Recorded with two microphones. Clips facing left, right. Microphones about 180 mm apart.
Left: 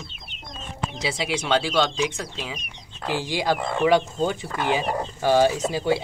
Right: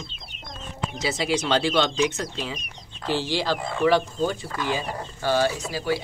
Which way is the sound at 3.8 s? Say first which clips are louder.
Even; 15° left (ahead or behind).